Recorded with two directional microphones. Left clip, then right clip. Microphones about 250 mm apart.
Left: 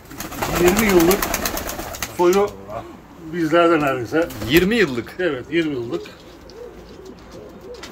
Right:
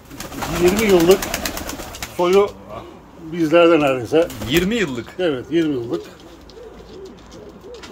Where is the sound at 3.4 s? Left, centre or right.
Right.